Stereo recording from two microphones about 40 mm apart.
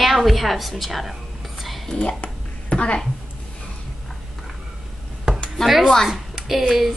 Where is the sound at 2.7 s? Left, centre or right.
Left.